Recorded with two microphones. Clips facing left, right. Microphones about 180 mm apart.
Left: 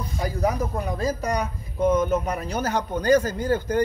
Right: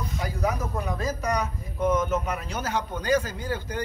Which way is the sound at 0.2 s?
35° left (ahead or behind).